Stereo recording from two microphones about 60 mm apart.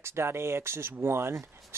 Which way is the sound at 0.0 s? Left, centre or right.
Right.